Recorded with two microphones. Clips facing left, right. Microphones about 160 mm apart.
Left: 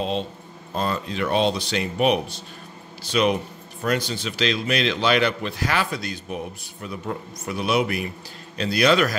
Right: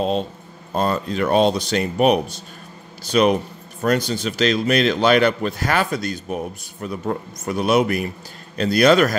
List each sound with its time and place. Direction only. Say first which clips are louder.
0.7 s a man's voice: right 5 dB; 45° right (ahead or behind)